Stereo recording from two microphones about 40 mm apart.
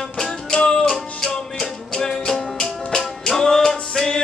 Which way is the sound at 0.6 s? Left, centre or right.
Left.